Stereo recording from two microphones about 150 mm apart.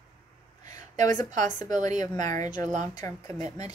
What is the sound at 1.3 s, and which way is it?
A woman's voice, 55° right (ahead or behind).